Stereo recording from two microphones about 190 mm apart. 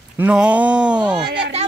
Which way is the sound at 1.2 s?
65° right (ahead or behind).